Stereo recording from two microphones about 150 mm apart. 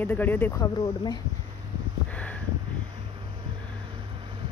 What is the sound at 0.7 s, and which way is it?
Speech, 25° left (ahead or behind).